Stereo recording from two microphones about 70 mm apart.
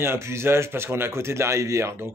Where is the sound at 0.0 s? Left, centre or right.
Right.